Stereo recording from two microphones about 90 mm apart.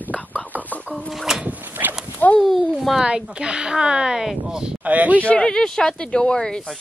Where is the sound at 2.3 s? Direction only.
5° left (ahead or behind); by 5.1 s 15° right (ahead or behind).